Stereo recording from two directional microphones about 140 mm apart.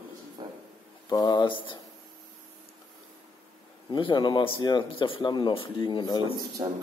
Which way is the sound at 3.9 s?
35° left (ahead or behind).